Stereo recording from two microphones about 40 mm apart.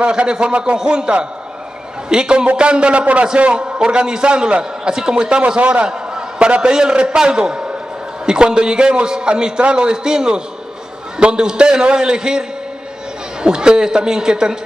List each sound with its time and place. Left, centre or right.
0.0 s a man's voice: right
5.9 s a sound: centre
6.6 s a man's voice: centre